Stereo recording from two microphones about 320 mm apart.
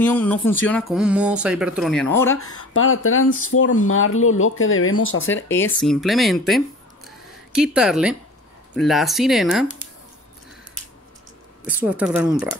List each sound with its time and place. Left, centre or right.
0.0 s speech: centre
2.7 s speech: left
5.5 s speech: centre
7.1 s a sound: centre
8.7 s speech: centre
11.6 s speech: centre